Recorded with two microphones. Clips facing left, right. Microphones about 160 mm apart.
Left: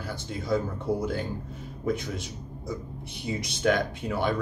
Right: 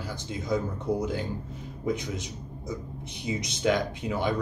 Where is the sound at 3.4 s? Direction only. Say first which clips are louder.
Left 1 dB; 20° right (ahead or behind).